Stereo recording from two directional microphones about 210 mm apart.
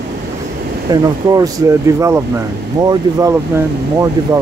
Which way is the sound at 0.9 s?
15° right (ahead or behind).